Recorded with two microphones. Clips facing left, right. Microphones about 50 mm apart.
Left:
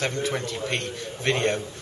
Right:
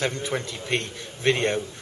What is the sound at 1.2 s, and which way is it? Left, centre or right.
Speech, right.